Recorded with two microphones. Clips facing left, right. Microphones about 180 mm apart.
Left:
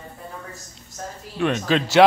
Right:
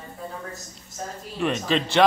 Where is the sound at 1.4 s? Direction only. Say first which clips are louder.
Left 3 dB; centre (ahead or behind).